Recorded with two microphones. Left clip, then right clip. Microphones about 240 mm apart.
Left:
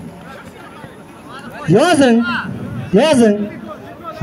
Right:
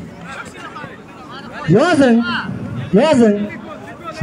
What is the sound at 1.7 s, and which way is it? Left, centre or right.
Speech, left.